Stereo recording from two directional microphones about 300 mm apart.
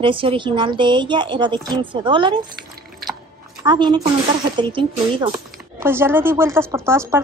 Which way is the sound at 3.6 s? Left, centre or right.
Centre.